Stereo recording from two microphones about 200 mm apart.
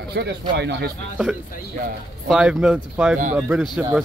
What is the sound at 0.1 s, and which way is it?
Speech, 55° right (ahead or behind).